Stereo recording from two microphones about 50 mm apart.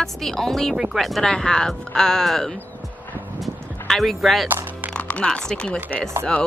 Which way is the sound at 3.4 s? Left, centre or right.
Centre.